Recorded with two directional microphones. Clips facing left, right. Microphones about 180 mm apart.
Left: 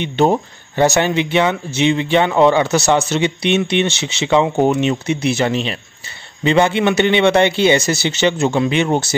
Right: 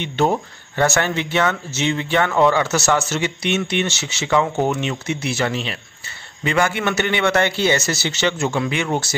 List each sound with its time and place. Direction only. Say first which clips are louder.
0.0 s a man's voice: left 4 dB; 20° left (ahead or behind)